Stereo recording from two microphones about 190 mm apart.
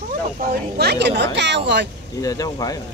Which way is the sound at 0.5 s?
60° right (ahead or behind).